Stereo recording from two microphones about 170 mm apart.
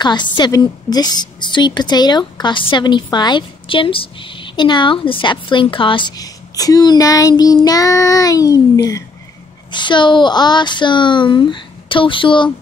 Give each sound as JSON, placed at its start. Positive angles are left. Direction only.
{"t": 0.0, "sound": "a woman's voice", "side_deg": 25}